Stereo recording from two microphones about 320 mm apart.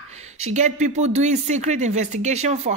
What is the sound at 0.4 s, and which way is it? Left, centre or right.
Speech, right.